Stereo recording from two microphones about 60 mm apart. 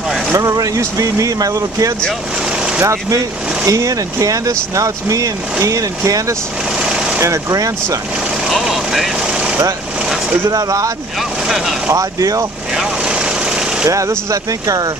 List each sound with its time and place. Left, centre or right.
0.4 s speech: right
2.8 s speech: right
3.6 s speech: right
6.8 s vehicle: centre
7.2 s speech: right
8.5 s vehicle: centre
10.5 s speech: right
11.4 s speech: centre
11.9 s speech: right
12.7 s vehicle: centre
13.8 s speech: right